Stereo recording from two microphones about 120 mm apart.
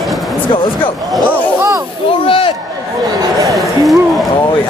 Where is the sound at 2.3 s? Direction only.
50° left (ahead or behind).